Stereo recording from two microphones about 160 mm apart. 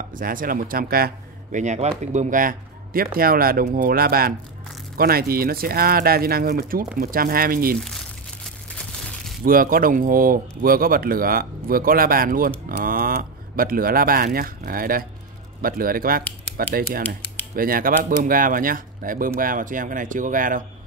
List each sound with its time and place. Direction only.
0.1 s speech: 60° right (ahead or behind)
1.6 s speech: 45° right (ahead or behind); by 7.7 s 65° right (ahead or behind)
9.4 s speech: 65° right (ahead or behind)